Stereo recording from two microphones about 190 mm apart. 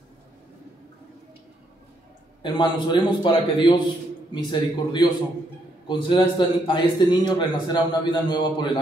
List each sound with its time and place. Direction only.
2.4 s a man's voice: 25° left (ahead or behind)